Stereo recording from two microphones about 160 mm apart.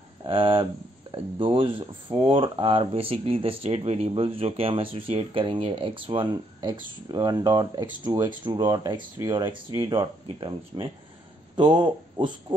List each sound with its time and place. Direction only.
0.2 s speech: 35° right (ahead or behind)